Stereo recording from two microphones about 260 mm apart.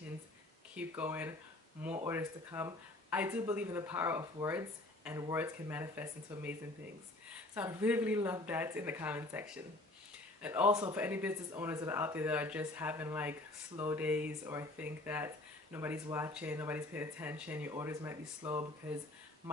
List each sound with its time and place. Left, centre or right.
0.7 s speech: centre